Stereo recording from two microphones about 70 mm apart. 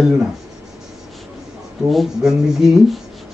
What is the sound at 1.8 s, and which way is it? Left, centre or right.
Speech, centre.